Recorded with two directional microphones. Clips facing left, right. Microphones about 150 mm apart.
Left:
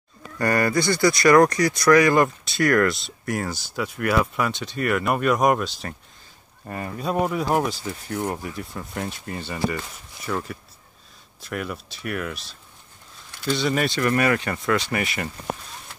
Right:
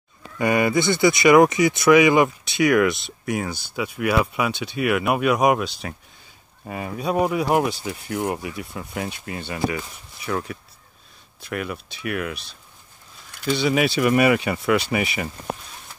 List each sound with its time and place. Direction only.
0.4 s speech: 5° right (ahead or behind)
0.7 s speech: 25° right (ahead or behind)
1.0 s speech: 5° right (ahead or behind)